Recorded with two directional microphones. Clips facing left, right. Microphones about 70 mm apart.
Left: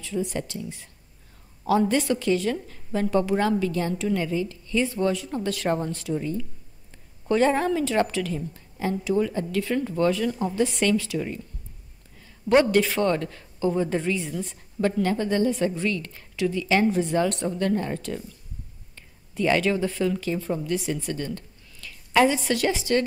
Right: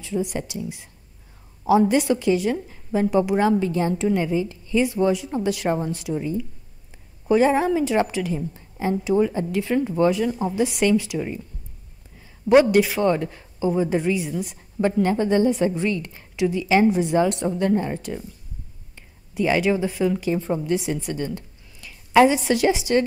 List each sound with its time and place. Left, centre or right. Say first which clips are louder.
0.0 s a woman's voice: right 2 dB; centre